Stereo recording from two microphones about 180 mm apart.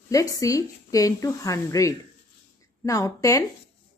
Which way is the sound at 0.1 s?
20° left (ahead or behind).